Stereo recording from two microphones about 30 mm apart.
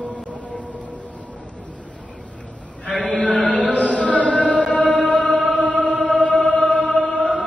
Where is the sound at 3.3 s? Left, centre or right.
Left.